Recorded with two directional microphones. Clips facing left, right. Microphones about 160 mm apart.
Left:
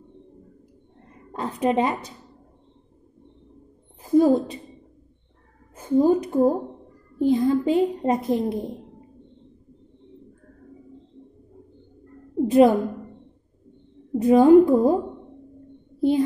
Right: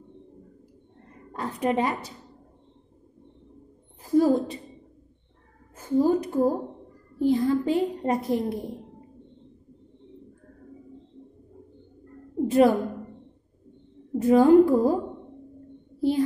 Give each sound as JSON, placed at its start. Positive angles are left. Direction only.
{"t": 1.3, "sound": "a woman's voice", "side_deg": 20}
{"t": 4.0, "sound": "a woman's voice", "side_deg": 20}
{"t": 5.8, "sound": "a woman's voice", "side_deg": 20}
{"t": 12.4, "sound": "a woman's voice", "side_deg": 20}
{"t": 14.1, "sound": "a woman's voice", "side_deg": 20}